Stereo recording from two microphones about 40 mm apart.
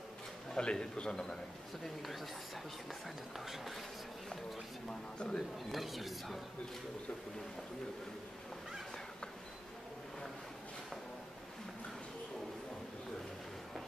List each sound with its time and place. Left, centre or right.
0.6 s a man's voice: left
3.3 s speech: centre
5.2 s a man's voice: centre
5.7 s speech: centre